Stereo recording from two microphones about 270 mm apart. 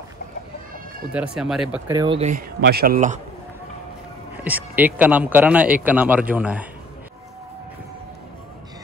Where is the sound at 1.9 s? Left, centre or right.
Centre.